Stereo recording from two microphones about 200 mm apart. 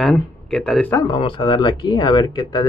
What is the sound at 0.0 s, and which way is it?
Speech, 5° left (ahead or behind).